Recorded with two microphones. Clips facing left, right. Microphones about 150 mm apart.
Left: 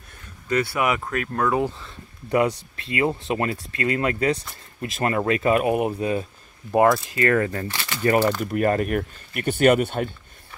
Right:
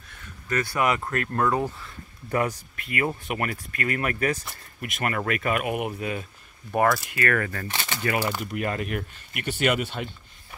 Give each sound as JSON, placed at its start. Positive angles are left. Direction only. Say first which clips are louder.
{"t": 0.5, "sound": "speech", "louder": "left 2 dB", "side_deg": 5}
{"t": 1.8, "sound": "speech", "louder": "left 1 dB", "side_deg": 25}
{"t": 7.6, "sound": "speech", "louder": "left 1 dB", "side_deg": -20}
{"t": 8.0, "sound": "speech", "louder": "left 8 dB", "side_deg": 40}